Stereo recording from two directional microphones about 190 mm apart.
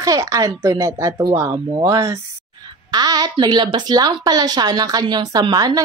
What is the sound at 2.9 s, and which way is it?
Speech, 20° right (ahead or behind).